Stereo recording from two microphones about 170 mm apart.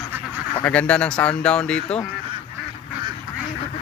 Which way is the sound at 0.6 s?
10° left (ahead or behind).